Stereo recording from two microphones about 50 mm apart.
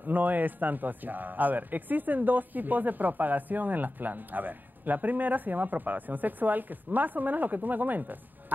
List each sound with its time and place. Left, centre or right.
0.0 s speech: right